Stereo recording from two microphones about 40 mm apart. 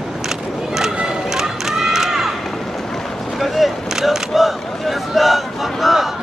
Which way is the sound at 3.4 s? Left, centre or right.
Centre.